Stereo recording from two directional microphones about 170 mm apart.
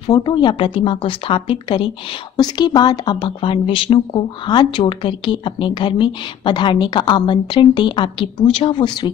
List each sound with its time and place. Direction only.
0.0 s speech: 25° left (ahead or behind)